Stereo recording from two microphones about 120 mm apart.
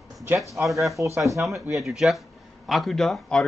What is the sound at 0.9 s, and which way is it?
Speech, 25° right (ahead or behind).